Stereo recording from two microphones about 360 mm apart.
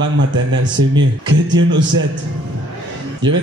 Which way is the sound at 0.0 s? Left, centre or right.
Right.